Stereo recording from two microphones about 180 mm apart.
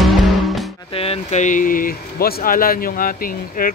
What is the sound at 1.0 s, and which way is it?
Speech, 35° left (ahead or behind).